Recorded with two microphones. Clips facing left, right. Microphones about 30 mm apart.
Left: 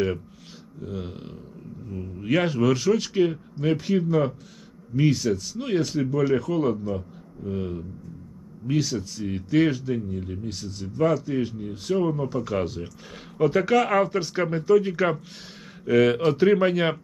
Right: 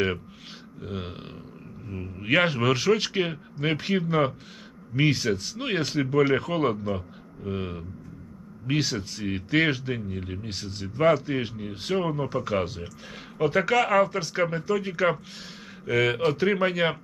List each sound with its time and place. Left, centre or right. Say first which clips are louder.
0.7 s a man's voice: left 1 dB; right; by 16.9 s centre